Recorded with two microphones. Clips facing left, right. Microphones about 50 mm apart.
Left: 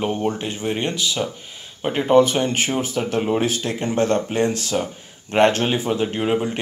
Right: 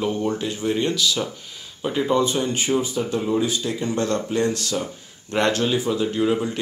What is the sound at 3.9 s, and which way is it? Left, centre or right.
Speech, left.